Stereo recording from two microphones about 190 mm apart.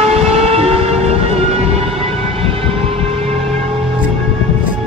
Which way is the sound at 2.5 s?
30° right (ahead or behind).